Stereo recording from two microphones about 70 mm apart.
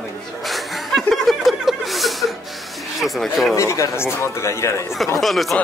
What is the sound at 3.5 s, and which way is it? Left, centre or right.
Speech, left.